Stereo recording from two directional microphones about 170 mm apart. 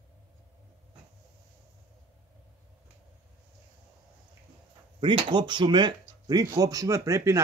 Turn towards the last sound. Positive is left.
turn(degrees=-20)  # may be behind; listen again after turning